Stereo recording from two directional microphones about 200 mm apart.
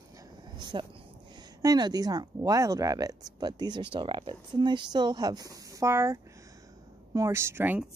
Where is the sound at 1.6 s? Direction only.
20° right (ahead or behind).